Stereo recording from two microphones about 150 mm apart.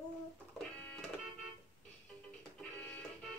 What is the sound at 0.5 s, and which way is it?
Music, 10° left (ahead or behind).